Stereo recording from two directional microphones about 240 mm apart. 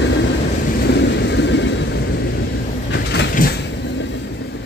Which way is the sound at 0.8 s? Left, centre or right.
Left.